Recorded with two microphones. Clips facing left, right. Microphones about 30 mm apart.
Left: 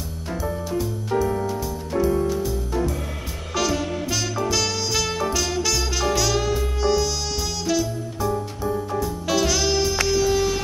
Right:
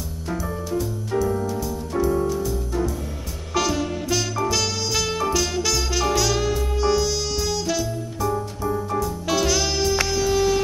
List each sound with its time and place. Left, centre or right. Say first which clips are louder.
3.5 s music: right 1 dB; centre
9.3 s music: left 1 dB; centre